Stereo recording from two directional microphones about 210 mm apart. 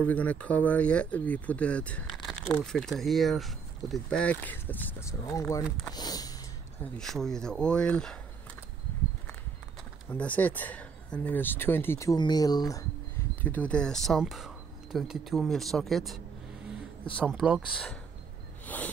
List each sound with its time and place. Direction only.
0.0 s speech: 5° left (ahead or behind)
5.9 s a sound: 20° left (ahead or behind)
6.8 s speech: centre (ahead or behind)
10.0 s speech: 5° left (ahead or behind)
17.2 s speech: 5° right (ahead or behind)